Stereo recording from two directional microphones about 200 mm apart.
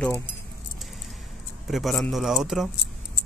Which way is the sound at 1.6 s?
Centre (ahead or behind).